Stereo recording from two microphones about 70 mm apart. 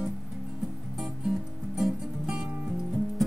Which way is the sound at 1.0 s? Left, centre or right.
Centre.